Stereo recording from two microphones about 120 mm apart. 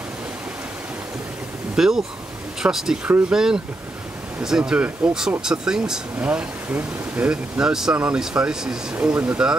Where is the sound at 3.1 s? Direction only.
15° right (ahead or behind).